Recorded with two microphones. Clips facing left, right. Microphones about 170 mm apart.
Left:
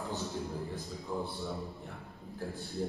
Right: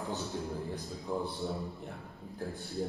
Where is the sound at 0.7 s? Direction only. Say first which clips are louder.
Right 2 dB; 20° right (ahead or behind).